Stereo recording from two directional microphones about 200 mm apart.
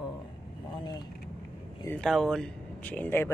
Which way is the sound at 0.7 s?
20° left (ahead or behind).